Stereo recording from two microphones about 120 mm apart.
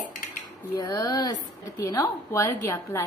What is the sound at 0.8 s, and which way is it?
A woman's voice, 30° left (ahead or behind).